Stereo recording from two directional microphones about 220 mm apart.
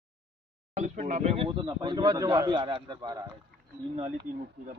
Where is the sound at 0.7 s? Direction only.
35° right (ahead or behind); by 3.3 s 20° right (ahead or behind).